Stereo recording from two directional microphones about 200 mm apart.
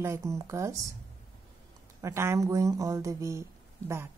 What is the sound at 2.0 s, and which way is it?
Speech, 15° right (ahead or behind).